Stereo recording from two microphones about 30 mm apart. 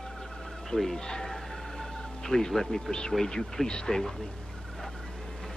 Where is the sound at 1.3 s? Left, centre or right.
Centre.